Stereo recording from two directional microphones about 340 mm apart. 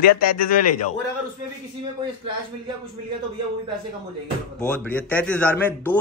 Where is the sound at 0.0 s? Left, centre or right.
Left.